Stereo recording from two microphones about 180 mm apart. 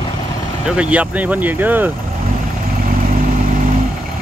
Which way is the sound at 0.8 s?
5° right (ahead or behind).